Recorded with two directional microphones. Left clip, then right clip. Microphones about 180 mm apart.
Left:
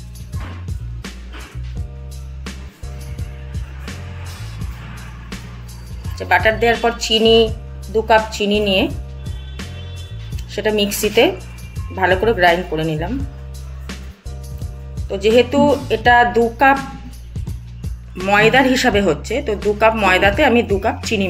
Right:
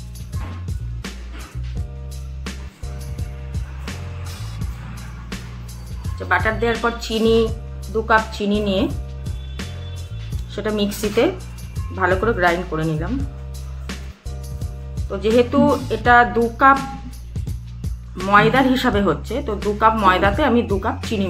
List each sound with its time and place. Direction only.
0.3 s music: centre (ahead or behind)
3.2 s music: centre (ahead or behind)
6.0 s speech: centre (ahead or behind)
8.5 s speech: 20° left (ahead or behind)
8.8 s music: centre (ahead or behind)
10.5 s a woman's voice: 5° right (ahead or behind)
14.6 s music: centre (ahead or behind)
18.7 s speech: 10° right (ahead or behind)